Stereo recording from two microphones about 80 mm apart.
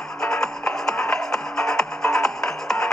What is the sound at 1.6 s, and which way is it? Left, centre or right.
Music, centre.